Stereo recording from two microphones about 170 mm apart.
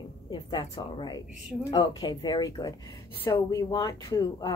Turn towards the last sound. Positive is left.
turn(degrees=20)  # may be behind; listen again after turning